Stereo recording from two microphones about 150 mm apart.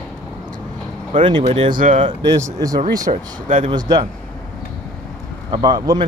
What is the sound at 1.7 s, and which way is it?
Speech, 60° right (ahead or behind).